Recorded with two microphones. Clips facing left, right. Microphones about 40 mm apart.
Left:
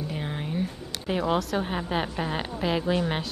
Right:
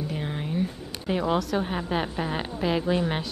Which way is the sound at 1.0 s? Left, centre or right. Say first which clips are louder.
Right 1 dB; centre.